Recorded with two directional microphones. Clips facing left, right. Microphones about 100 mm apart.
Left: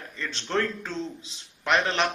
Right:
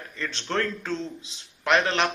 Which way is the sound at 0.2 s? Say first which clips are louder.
Even; 5° left (ahead or behind).